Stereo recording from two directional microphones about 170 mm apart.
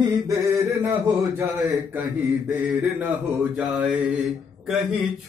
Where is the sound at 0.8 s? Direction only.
10° right (ahead or behind).